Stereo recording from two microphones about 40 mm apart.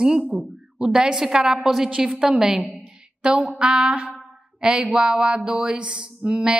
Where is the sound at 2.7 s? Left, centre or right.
Right.